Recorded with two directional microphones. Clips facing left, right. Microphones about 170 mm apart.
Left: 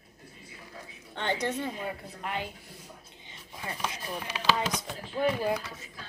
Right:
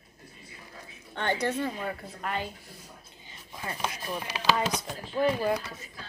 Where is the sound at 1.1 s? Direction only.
15° left (ahead or behind).